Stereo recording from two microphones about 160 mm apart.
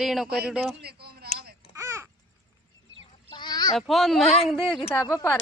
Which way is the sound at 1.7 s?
15° right (ahead or behind).